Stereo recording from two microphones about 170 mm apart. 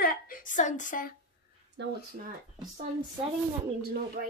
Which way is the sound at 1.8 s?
90° right.